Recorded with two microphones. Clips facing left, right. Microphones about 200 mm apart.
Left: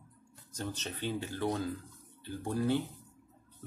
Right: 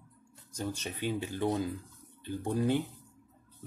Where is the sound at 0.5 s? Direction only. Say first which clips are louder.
Right 3 dB; 10° right (ahead or behind).